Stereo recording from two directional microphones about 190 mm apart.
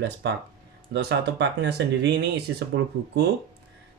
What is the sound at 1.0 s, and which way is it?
Speech, 65° right (ahead or behind).